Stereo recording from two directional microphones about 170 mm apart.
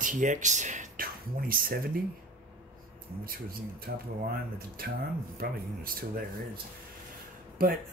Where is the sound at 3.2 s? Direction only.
60° right (ahead or behind).